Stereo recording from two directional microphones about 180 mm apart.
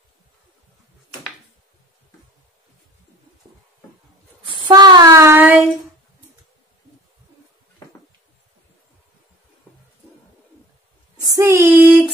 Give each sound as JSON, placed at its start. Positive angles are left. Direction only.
{"t": 4.5, "sound": "child singing", "side_deg": -25}
{"t": 11.3, "sound": "female singing", "side_deg": -15}